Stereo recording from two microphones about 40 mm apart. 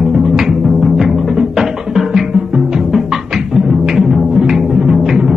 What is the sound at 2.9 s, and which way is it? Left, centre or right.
Music, centre.